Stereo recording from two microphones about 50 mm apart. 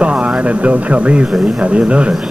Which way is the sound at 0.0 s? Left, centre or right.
Right.